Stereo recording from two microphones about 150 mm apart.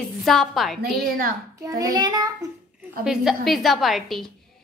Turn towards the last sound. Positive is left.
turn(degrees=0)  # may be behind; listen again after turning